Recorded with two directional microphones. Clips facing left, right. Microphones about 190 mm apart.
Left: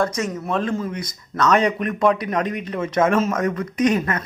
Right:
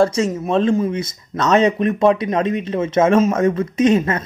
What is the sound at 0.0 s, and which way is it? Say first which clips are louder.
Speech: right 6 dB; 25° right (ahead or behind).